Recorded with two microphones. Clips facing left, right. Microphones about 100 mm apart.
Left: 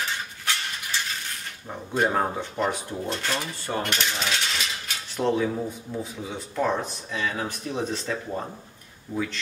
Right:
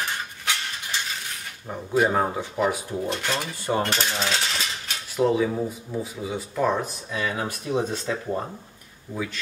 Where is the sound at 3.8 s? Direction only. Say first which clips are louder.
Right 2 dB; 35° right (ahead or behind).